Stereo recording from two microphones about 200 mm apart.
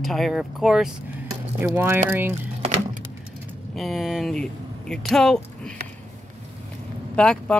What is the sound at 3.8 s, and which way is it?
Speech, centre (ahead or behind).